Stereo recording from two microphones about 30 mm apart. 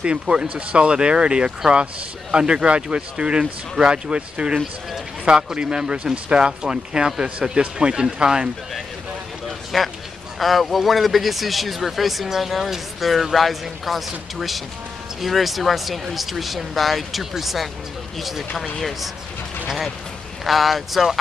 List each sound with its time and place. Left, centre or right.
0.6 s speech: right
6.1 s speech: right
6.4 s speech: right
9.7 s speech: centre
20.4 s speech: centre